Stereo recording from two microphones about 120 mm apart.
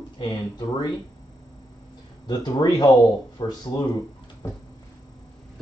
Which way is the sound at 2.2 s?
35° left (ahead or behind).